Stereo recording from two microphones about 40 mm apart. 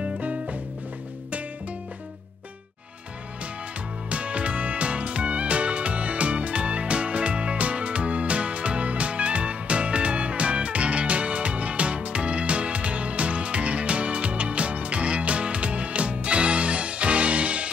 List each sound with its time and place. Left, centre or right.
0.0 s music: right
4.1 s music: right